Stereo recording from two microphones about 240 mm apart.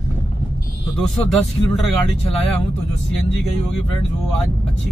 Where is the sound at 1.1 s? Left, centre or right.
Centre.